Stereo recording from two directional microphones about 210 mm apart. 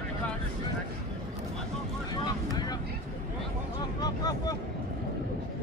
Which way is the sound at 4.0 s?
20° left (ahead or behind).